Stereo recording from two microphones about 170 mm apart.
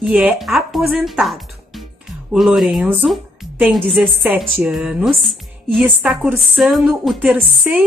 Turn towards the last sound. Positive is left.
turn(degrees=-5)  # may be behind; listen again after turning